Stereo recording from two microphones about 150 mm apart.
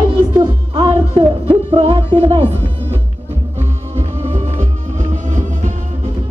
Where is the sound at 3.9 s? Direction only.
45° right (ahead or behind).